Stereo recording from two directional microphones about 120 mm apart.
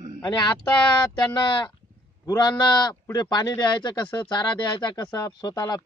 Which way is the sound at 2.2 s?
35° left (ahead or behind).